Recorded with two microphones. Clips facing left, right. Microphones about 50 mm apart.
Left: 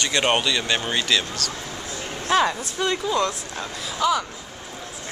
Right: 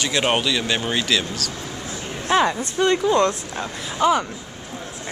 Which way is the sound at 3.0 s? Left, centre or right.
Right.